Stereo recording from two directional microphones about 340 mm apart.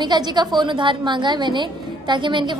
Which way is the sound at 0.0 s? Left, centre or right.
Centre.